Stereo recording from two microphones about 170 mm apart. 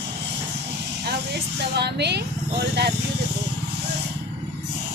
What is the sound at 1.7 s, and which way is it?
Speech, 80° right.